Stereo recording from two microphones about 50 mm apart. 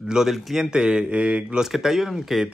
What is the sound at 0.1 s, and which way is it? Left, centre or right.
Speech, centre.